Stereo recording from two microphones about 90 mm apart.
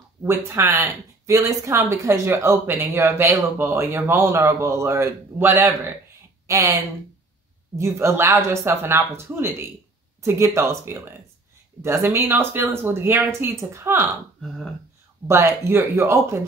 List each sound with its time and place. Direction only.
0.2 s speech: 25° right (ahead or behind)
15.2 s speech: 30° right (ahead or behind)